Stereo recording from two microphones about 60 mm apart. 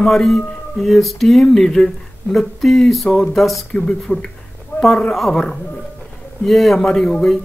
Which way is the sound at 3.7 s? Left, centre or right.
Centre.